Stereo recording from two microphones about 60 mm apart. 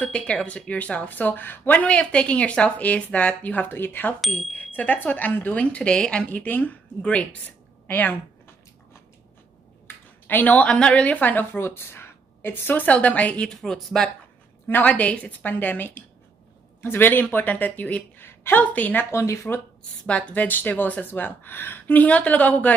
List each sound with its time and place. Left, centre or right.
0.2 s speech: centre
0.5 s speech: left
3.6 s speech: left; by 6.3 s centre
6.3 s speech: left
7.8 s speech: left
9.8 s a woman's voice: left
13.5 s speech: centre
14.7 s speech: left
18.2 s a sound: left
18.6 s speech: left
19.1 s speech: left
20.1 s speech: left